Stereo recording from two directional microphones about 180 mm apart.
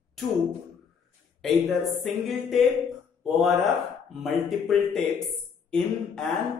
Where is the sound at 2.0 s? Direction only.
Centre (ahead or behind).